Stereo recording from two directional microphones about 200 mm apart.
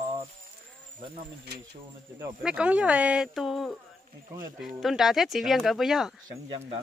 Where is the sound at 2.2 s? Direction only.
5° right (ahead or behind).